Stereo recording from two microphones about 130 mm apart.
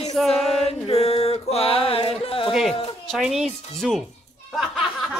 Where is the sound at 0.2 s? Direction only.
5° left (ahead or behind).